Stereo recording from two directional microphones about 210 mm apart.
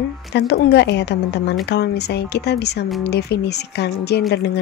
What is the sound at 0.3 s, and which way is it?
Speech, 55° left (ahead or behind).